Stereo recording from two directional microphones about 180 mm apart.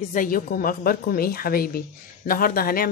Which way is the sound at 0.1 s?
50° left (ahead or behind).